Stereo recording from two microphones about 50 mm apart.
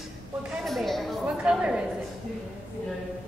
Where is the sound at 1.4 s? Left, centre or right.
Centre.